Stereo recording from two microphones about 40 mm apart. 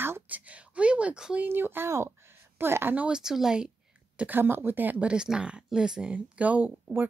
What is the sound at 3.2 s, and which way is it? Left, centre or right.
Speech, centre.